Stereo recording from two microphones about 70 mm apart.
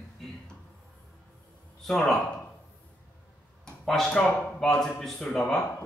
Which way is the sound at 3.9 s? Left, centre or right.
Centre.